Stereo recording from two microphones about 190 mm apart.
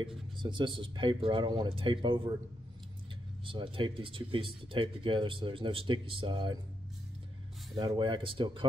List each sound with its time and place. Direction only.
0.0 s speech: 25° right (ahead or behind)
3.4 s speech: 25° right (ahead or behind)
7.7 s speech: 25° right (ahead or behind)